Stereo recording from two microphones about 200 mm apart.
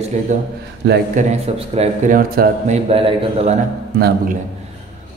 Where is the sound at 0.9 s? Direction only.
55° right (ahead or behind).